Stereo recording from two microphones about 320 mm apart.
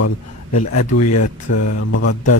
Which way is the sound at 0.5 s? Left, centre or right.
Left.